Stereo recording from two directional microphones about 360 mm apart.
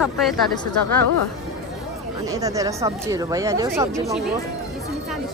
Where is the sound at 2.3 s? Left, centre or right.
Centre.